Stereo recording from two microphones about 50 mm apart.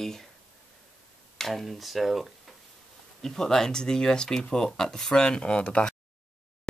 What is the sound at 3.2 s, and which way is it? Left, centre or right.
Speech, centre.